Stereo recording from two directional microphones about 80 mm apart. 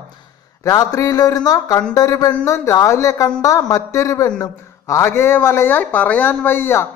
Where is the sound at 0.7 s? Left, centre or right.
Left.